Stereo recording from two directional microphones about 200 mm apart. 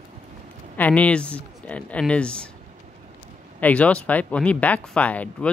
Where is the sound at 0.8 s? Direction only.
5° left (ahead or behind).